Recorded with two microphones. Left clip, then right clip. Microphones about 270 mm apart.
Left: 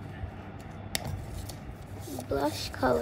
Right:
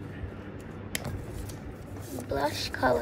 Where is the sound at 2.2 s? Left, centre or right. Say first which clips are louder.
Right 1 dB; left.